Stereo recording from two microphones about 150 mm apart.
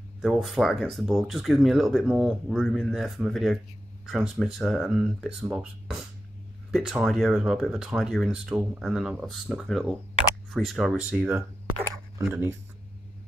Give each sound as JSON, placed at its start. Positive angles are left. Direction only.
{"t": 0.2, "sound": "speech", "side_deg": 0}
{"t": 12.3, "sound": "speech", "side_deg": -15}